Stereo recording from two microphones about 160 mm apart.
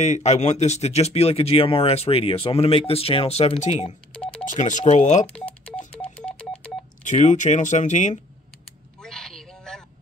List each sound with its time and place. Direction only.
0.0 s speech: 45° left (ahead or behind)
4.1 s telephone dialing: 5° left (ahead or behind)
4.5 s speech: 50° left (ahead or behind)
5.3 s telephone dialing: 5° left (ahead or behind)
7.1 s speech: 50° left (ahead or behind)
9.0 s a sound: 5° left (ahead or behind)